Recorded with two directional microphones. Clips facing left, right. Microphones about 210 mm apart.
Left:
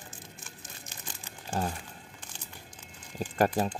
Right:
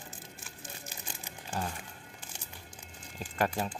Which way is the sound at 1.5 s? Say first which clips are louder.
Left 4 dB; 40° left (ahead or behind).